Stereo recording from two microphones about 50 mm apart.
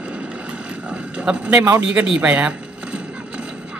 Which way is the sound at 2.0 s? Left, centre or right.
Right.